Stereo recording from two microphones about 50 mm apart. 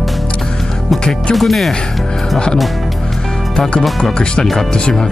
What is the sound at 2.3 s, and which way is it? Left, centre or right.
Speech, centre.